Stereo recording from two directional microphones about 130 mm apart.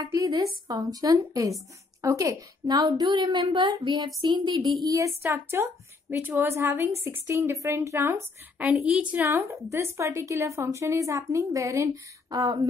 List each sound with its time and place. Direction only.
0.0 s speech: 30° right (ahead or behind)
4.8 s a woman's voice: 25° right (ahead or behind); by 9.2 s 5° right (ahead or behind)
9.2 s a woman's voice: 20° right (ahead or behind)